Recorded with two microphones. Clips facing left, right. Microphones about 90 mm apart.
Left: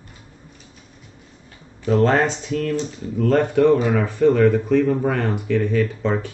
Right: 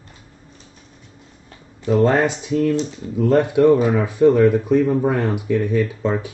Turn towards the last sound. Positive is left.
turn(degrees=-10)  # may be behind; listen again after turning